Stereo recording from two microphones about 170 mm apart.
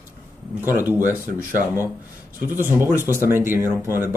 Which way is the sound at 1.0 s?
50° right (ahead or behind).